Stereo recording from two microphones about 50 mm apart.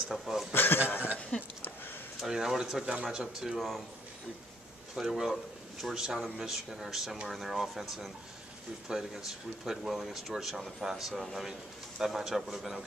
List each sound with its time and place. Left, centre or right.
0.1 s speech: centre
0.5 s a sound: left
1.3 s a sound: left
2.1 s speech: centre
4.9 s speech: centre
8.8 s speech: centre